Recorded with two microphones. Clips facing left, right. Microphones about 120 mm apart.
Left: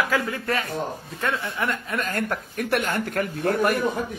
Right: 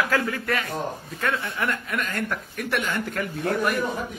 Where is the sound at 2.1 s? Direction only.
45° left (ahead or behind).